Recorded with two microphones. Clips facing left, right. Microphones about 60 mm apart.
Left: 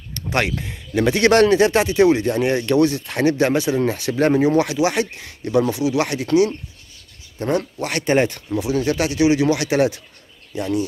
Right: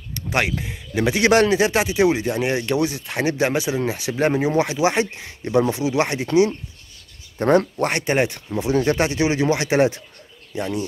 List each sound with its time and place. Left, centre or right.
0.1 s speech: centre
4.6 s speech: right
7.3 s speech: right
8.0 s speech: centre
8.5 s speech: right